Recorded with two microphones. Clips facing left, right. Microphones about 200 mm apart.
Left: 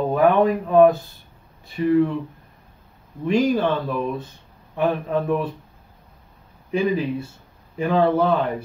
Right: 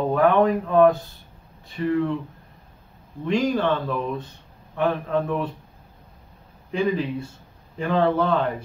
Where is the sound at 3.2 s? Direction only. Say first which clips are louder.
Left 3 dB; 10° left (ahead or behind).